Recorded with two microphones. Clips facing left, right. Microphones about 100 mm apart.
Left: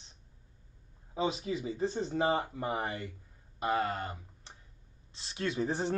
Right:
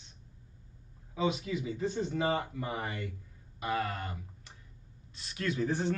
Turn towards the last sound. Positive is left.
turn(degrees=25)  # may be behind; listen again after turning